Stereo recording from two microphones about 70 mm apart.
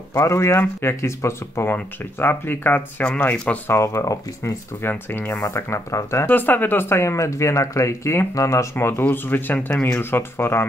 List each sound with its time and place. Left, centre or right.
0.2 s speech: left
3.6 s speech: left
4.8 s speech: left
6.2 s speech: left
8.7 s speech: left